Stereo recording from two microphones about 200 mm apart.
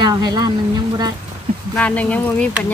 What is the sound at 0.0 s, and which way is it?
Speech, 20° right (ahead or behind).